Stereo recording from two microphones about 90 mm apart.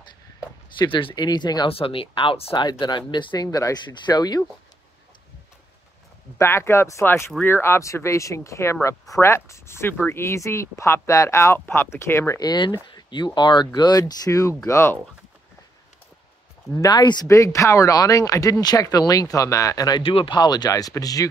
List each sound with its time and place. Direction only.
0.7 s speech: 65° left (ahead or behind)
1.7 s speech: 85° left
2.8 s speech: 60° left (ahead or behind)
3.5 s speech: 40° left (ahead or behind)
3.8 s speech: 55° left (ahead or behind)
6.3 s speech: 30° left (ahead or behind)
12.4 s speech: 55° left (ahead or behind)
14.7 s speech: 30° left (ahead or behind)
16.7 s speech: 40° left (ahead or behind)
17.0 s speech: 50° left (ahead or behind)
17.3 s speech: 35° left (ahead or behind)
20.0 s speech: 85° left
20.3 s speech: 50° left (ahead or behind)